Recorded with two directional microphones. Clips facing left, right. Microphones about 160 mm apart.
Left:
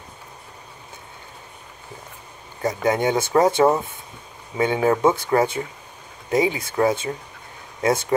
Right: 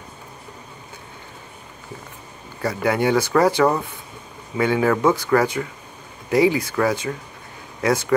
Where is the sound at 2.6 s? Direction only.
20° left (ahead or behind).